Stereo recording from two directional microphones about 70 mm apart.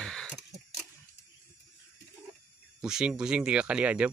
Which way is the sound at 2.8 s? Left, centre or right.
Centre.